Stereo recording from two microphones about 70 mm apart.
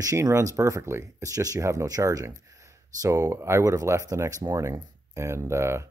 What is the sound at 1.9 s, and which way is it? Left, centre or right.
Speech, right.